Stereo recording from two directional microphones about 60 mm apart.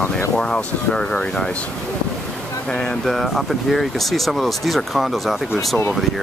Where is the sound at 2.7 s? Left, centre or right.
Centre.